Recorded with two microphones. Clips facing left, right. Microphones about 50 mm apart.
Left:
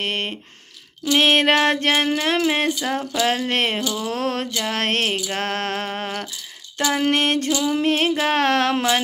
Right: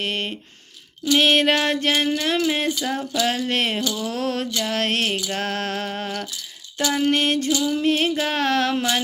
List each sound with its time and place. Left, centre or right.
0.0 s speech: left
2.8 s speech: left
7.0 s a sound: left